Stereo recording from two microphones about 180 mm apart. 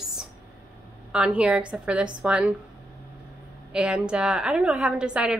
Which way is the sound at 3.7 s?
5° right (ahead or behind).